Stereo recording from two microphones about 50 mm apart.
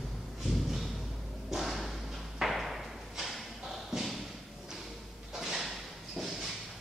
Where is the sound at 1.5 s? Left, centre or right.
Centre.